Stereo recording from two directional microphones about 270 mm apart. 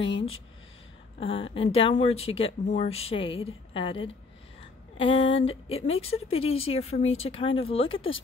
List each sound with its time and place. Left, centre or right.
1.2 s speech: centre